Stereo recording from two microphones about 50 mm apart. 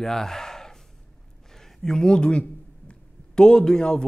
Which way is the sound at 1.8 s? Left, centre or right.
Centre.